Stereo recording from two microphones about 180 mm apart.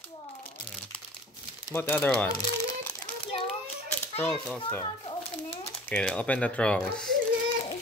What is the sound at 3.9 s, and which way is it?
Speech, 10° left (ahead or behind).